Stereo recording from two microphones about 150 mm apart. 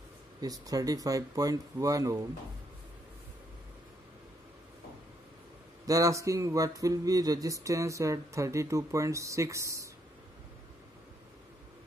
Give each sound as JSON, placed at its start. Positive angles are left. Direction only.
{"t": 0.4, "sound": "speech", "side_deg": -25}
{"t": 5.9, "sound": "speech", "side_deg": -20}